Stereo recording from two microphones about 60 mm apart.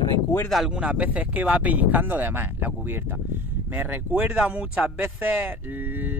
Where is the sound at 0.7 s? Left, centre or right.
Centre.